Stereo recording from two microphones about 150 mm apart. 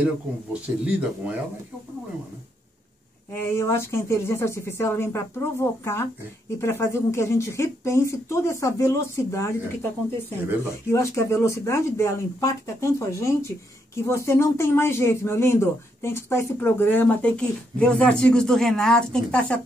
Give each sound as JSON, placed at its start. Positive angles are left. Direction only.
{"t": 0.5, "sound": "speech", "side_deg": -10}
{"t": 3.3, "sound": "speech", "side_deg": 15}
{"t": 10.9, "sound": "speech", "side_deg": 20}